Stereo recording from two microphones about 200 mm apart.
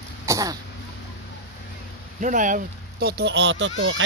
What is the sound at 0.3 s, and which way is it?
Throat clearing, 15° right (ahead or behind).